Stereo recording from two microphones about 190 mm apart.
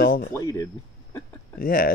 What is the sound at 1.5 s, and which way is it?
Speech, 50° left (ahead or behind).